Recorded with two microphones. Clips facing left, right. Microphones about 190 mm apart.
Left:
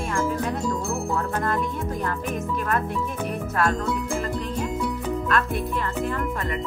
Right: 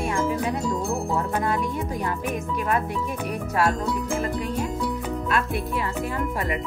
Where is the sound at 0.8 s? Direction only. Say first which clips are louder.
Right 1 dB; 20° right (ahead or behind).